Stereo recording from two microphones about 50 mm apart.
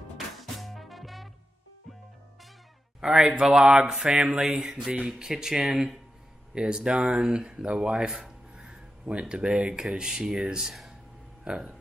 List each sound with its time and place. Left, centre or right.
0.4 s music: centre
3.0 s speech: centre
11.4 s speech: centre